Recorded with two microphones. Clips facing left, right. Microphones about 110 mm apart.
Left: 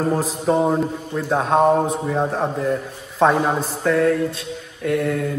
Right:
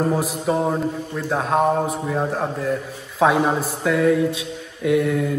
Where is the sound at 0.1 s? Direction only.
10° right (ahead or behind).